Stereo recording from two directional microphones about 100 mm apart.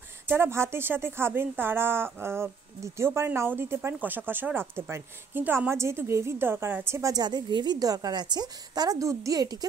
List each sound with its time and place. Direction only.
0.3 s speech: 25° right (ahead or behind)